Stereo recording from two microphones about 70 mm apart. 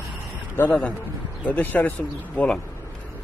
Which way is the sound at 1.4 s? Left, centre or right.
Left.